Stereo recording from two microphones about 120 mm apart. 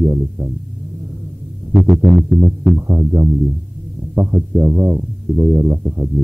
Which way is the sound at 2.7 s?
20° right (ahead or behind).